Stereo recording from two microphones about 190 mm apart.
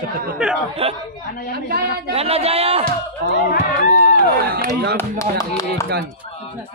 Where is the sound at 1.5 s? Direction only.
55° right (ahead or behind).